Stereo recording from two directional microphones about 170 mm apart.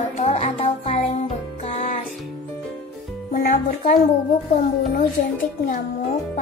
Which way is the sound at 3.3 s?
55° left (ahead or behind).